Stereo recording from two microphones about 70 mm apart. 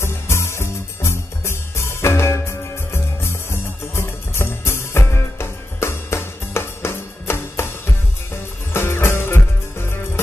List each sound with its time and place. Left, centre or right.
0.0 s music: left